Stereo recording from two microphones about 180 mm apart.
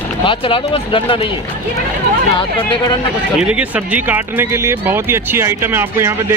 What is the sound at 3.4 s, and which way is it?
Speech, 5° right (ahead or behind).